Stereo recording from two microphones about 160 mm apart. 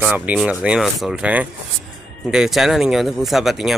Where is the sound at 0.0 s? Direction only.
5° right (ahead or behind).